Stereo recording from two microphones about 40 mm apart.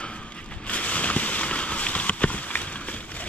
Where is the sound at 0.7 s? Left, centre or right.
Left.